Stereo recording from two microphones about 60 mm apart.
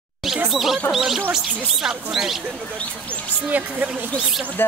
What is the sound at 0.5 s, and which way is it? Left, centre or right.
Speech, centre.